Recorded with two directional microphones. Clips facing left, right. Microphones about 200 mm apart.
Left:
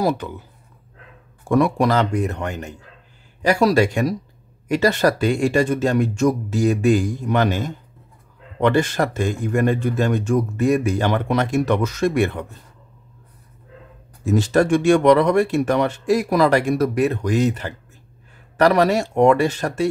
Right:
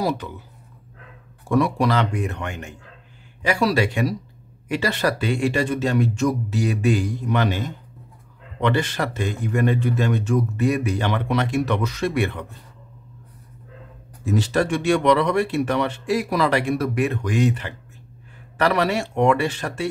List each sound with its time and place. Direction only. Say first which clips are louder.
1.5 s speech: left 3 dB; 50° left (ahead or behind)
14.2 s speech: left 4 dB; 45° left (ahead or behind)